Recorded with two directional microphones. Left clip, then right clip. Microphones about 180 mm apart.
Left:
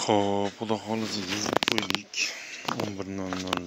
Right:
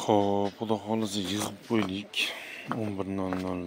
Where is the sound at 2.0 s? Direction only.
20° right (ahead or behind).